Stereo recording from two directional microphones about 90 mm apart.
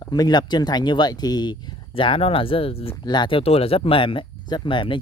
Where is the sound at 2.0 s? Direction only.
85° left.